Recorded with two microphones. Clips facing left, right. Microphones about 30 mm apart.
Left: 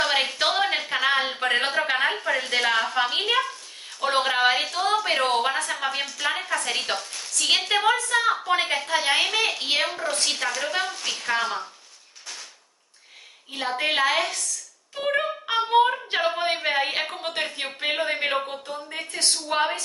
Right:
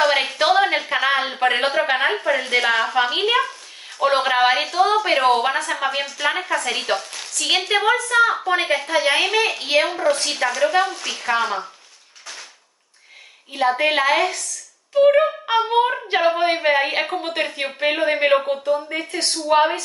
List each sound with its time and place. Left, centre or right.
0.0 s a sound: centre
4.0 s a woman's voice: centre
9.8 s a woman's voice: centre
13.7 s a woman's voice: centre